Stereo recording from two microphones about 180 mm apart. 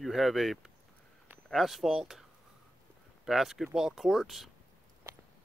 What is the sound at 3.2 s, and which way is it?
Speech, centre (ahead or behind).